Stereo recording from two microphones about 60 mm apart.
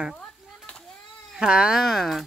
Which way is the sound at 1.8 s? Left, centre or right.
Centre.